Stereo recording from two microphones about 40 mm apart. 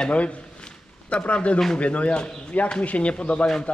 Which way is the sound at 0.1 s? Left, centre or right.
Left.